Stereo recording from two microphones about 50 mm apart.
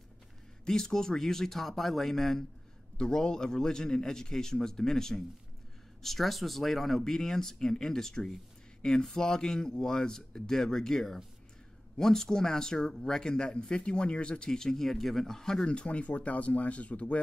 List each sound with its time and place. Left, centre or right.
0.7 s speech: centre
3.0 s speech: centre